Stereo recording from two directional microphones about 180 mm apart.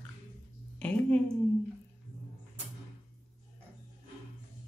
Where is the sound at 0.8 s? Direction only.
5° left (ahead or behind).